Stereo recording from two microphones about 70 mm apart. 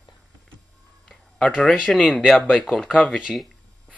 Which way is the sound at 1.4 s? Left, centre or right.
Centre.